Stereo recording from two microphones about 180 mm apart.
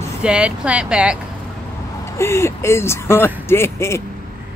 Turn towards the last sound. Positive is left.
turn(degrees=15)  # may be behind; listen again after turning